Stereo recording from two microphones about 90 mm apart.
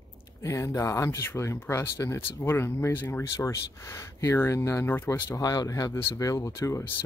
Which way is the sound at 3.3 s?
35° left (ahead or behind).